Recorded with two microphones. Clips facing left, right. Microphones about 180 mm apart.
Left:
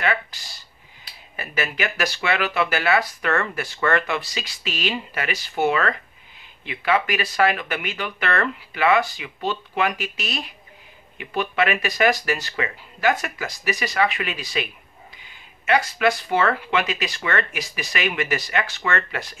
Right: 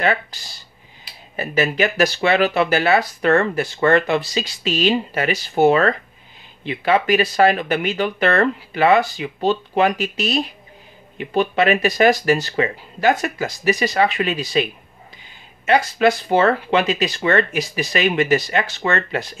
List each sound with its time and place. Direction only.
0.0 s speech: 30° right (ahead or behind)